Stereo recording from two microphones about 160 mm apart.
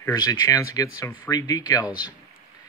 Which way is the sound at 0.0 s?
20° left (ahead or behind).